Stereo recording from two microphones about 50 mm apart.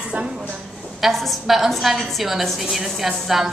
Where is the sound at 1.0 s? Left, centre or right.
Centre.